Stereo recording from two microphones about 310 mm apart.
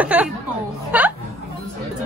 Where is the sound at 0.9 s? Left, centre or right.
Centre.